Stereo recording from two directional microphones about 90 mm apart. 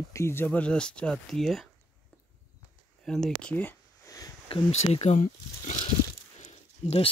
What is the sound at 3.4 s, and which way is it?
Speech, 15° left (ahead or behind).